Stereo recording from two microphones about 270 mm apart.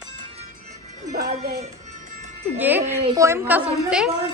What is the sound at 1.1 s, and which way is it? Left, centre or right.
Music, right.